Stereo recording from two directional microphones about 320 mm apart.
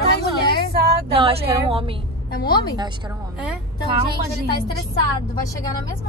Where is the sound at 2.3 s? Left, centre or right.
Left.